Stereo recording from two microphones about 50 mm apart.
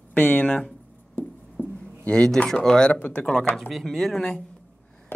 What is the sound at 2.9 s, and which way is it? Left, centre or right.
Speech, left.